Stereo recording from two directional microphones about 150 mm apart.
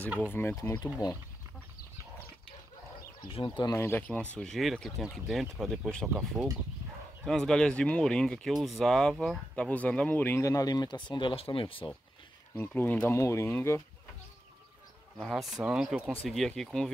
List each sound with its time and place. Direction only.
0.3 s speech: 15° left (ahead or behind)
1.0 s speech: 30° left (ahead or behind)
3.2 s speech: 35° left (ahead or behind)
3.7 s speech: 15° left (ahead or behind)
6.0 s speech: 15° right (ahead or behind)
7.2 s speech: 5° left (ahead or behind); by 11.9 s 35° left (ahead or behind)
12.5 s speech: 10° left (ahead or behind)
15.1 s speech: centre (ahead or behind)